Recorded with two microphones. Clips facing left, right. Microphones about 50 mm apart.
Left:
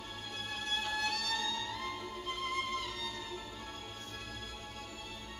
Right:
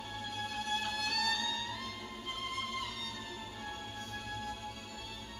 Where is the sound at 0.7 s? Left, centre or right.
Left.